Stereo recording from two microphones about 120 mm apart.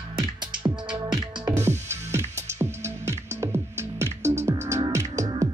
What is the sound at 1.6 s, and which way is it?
Music, 20° right (ahead or behind).